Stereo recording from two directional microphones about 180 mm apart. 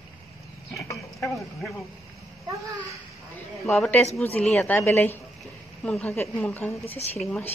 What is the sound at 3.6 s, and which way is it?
A woman's voice, centre (ahead or behind).